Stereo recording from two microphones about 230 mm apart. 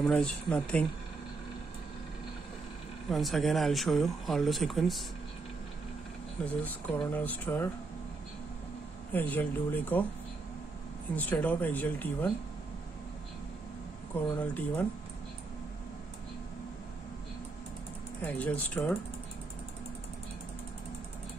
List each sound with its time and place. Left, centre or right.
0.0 s speech: centre
3.1 s speech: centre
6.4 s speech: centre
9.1 s speech: centre
11.1 s speech: centre
14.4 s speech: centre
18.2 s speech: centre